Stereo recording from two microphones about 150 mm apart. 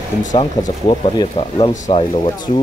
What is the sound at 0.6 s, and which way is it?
Speech, 30° left (ahead or behind).